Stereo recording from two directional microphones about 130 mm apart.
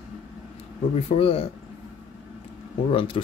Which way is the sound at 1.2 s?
45° left (ahead or behind).